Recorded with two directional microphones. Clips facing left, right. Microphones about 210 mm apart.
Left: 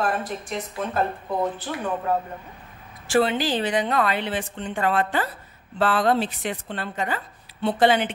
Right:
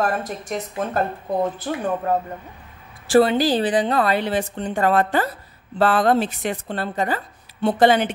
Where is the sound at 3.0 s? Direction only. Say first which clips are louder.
Right 5 dB; 35° right (ahead or behind).